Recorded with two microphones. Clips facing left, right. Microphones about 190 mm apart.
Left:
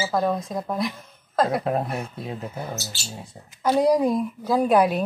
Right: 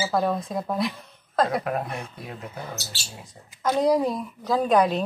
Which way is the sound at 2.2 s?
25° left (ahead or behind).